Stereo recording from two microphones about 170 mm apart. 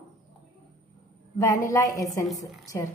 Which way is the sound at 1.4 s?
20° left (ahead or behind).